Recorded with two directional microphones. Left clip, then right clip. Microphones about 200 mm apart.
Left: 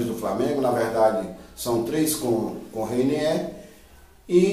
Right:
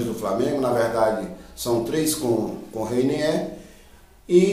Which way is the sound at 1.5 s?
15° right (ahead or behind).